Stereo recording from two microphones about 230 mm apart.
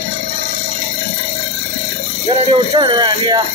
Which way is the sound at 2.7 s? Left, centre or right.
Centre.